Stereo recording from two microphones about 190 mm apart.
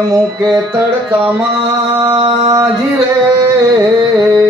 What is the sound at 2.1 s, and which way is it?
Music, 20° right (ahead or behind).